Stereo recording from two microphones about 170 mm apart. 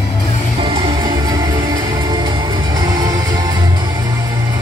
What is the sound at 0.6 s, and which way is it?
Music, 35° right (ahead or behind).